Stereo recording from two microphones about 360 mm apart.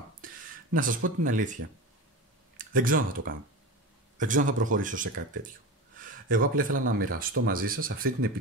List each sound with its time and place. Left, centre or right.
0.7 s speech: right
2.5 s speech: right
5.9 s a sound: right
6.8 s speech: right